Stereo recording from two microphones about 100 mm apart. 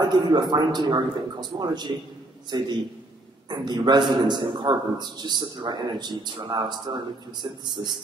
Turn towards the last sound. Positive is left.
turn(degrees=-45)  # may be behind; listen again after turning